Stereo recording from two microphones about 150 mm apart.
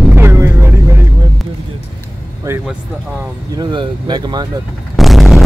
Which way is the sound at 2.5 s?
15° right (ahead or behind).